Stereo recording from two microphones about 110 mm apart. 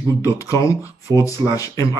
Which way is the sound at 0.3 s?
30° left (ahead or behind).